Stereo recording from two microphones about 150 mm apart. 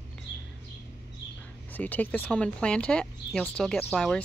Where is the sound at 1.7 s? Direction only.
10° left (ahead or behind).